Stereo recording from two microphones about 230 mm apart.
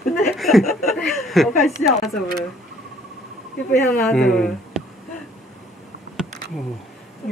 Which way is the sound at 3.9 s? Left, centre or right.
Centre.